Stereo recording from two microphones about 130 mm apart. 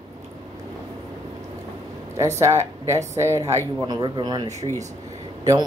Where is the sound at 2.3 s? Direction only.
25° right (ahead or behind).